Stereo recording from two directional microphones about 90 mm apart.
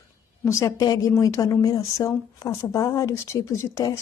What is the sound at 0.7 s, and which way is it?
A woman's voice, 45° left (ahead or behind).